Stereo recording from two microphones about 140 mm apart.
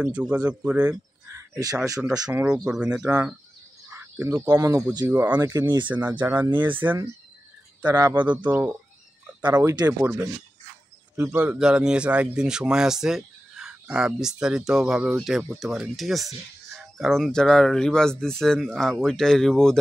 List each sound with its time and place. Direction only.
0.0 s speech: 10° right (ahead or behind)
1.2 s a sound: 20° right (ahead or behind)
2.3 s speech: 5° right (ahead or behind)
3.9 s speech: 15° right (ahead or behind)
5.9 s speech: 10° right (ahead or behind)
7.8 s speech: 25° right (ahead or behind)
8.5 s speech: 15° right (ahead or behind)
11.3 s speech: 10° right (ahead or behind)